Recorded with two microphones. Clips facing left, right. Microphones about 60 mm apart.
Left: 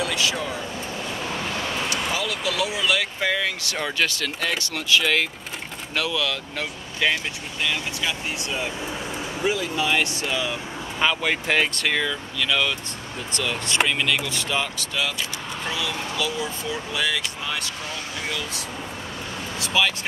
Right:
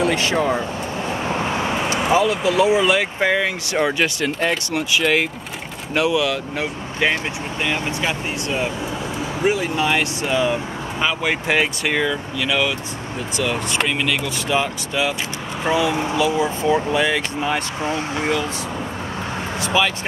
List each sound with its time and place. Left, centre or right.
0.0 s speech: right
1.2 s speech: right
9.8 s speech: centre
11.0 s speech: centre; by 18.4 s right
19.6 s speech: centre